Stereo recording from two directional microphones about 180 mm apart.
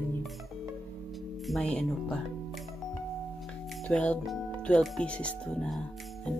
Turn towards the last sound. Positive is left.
turn(degrees=5)  # may be behind; listen again after turning